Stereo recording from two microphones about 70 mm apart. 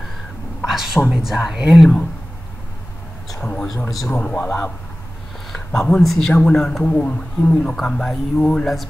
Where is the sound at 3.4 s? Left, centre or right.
Centre.